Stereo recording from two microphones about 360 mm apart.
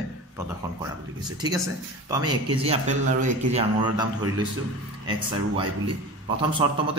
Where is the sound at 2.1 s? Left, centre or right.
Centre.